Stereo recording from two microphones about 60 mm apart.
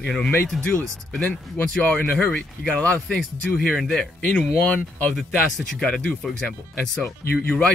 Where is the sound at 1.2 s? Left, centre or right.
Left.